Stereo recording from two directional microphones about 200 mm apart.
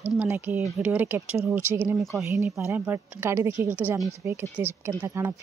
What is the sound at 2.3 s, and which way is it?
Speech, 15° right (ahead or behind).